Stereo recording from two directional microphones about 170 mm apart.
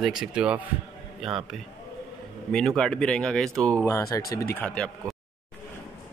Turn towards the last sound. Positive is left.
turn(degrees=5)  # may be behind; listen again after turning